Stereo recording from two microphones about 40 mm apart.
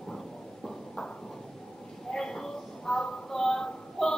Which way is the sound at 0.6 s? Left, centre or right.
Centre.